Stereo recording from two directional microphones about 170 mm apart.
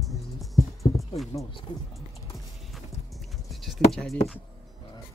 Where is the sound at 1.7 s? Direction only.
30° left (ahead or behind).